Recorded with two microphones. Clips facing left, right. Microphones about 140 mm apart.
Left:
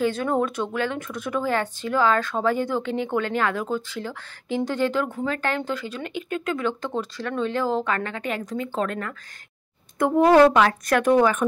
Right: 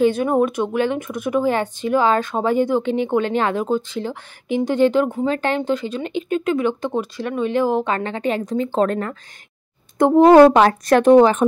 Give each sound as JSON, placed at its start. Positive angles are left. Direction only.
{"t": 0.0, "sound": "speech", "side_deg": -15}